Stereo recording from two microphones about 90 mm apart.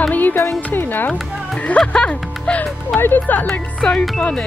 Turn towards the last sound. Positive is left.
turn(degrees=10)  # may be behind; listen again after turning